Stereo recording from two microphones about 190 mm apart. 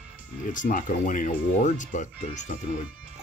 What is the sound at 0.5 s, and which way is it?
Speech, 45° left (ahead or behind).